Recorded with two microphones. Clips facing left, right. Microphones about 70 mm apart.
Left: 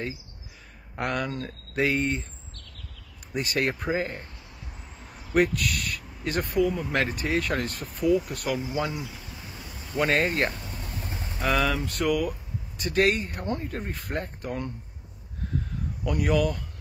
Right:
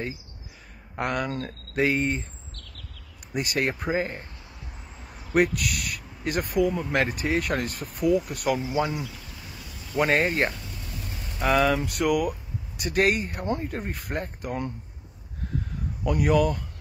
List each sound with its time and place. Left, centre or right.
0.9 s speech: centre
3.3 s speech: centre
9.0 s a sound: left
9.9 s speech: centre
10.5 s a sound: left
11.4 s speech: centre
13.7 s speech: centre
16.0 s speech: centre